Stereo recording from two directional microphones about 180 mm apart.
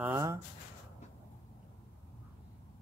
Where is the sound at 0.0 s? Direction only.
15° right (ahead or behind).